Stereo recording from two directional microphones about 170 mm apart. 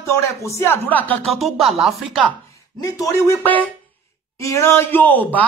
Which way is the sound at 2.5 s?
20° left (ahead or behind).